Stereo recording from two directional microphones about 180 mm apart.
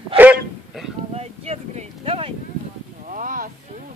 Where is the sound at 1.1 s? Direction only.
35° right (ahead or behind).